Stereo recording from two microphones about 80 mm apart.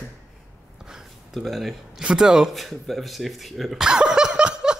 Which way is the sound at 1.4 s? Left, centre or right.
Centre.